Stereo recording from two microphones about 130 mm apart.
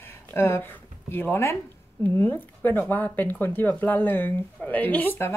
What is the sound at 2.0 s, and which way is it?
A woman's voice, 15° left (ahead or behind).